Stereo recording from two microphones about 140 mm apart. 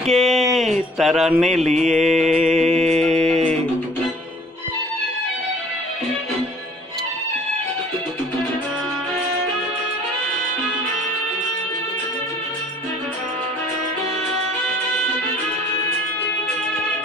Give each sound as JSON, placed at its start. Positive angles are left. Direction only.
{"t": 0.0, "sound": "speech", "side_deg": 0}
{"t": 1.8, "sound": "mantra", "side_deg": 0}
{"t": 3.0, "sound": "a sound", "side_deg": 0}